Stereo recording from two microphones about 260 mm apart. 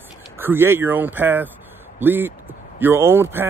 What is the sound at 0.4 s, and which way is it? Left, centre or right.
Speech, centre.